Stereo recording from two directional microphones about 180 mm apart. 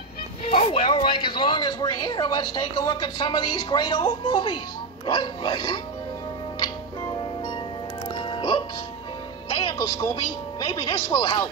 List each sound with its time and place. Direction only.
0.4 s speech: 30° left (ahead or behind)
8.4 s music: 25° left (ahead or behind)
9.5 s speech: 25° left (ahead or behind)